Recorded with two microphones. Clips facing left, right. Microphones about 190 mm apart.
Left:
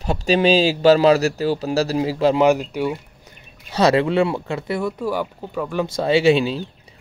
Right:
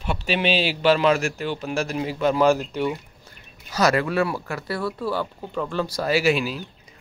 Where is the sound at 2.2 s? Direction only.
25° left (ahead or behind).